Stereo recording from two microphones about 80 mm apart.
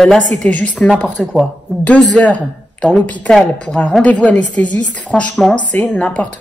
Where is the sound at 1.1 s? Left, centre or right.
Centre.